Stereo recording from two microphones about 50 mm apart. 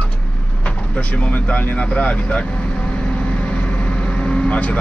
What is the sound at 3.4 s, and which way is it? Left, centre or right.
Vehicle, left.